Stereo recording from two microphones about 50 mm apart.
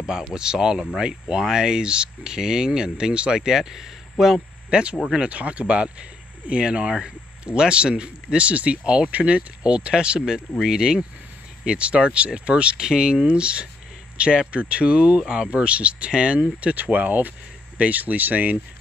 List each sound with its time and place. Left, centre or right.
0.3 s speech: centre
4.6 s speech: centre
16.6 s speech: right